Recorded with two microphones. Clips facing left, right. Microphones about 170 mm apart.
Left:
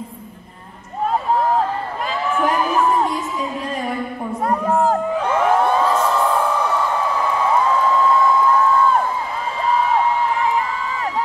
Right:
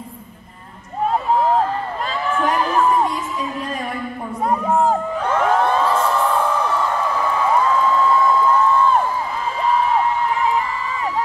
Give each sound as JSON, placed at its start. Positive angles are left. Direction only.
{"t": 4.8, "sound": "crowd", "side_deg": 10}